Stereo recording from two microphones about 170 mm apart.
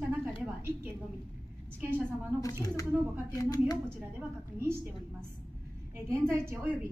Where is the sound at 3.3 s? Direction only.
20° left (ahead or behind).